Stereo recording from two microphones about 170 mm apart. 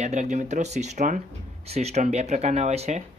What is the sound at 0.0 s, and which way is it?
Speech, 45° right (ahead or behind).